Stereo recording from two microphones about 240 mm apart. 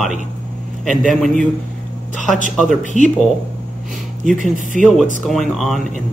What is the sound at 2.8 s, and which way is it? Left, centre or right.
Speech, left.